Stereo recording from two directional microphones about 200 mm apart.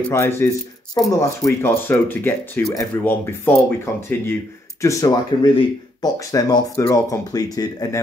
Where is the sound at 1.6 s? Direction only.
10° left (ahead or behind).